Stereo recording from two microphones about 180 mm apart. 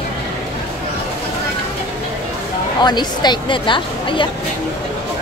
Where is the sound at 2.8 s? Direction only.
25° left (ahead or behind).